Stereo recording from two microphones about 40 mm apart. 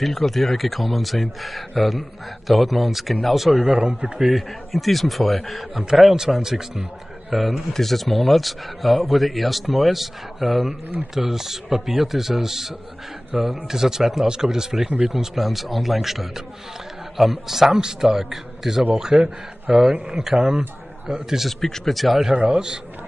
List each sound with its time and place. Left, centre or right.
0.0 s speech: centre
3.6 s a man's voice: right
4.2 s a man's voice: centre
7.7 s a man's voice: centre
21.5 s speech: centre
22.3 s a man's voice: right